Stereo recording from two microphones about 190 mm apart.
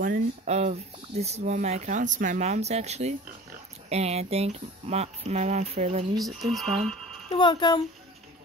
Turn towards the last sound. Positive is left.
turn(degrees=25)  # may be behind; listen again after turning